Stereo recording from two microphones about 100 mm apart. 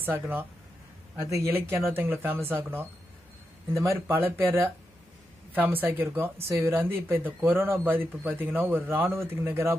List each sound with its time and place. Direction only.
1.2 s speech: 30° right (ahead or behind)